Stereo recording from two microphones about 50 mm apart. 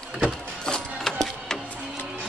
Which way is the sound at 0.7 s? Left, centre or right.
Centre.